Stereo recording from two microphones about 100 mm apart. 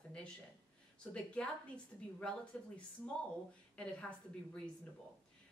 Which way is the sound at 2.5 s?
10° left (ahead or behind).